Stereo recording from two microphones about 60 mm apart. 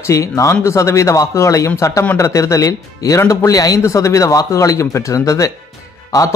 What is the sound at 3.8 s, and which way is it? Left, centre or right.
Speech, left.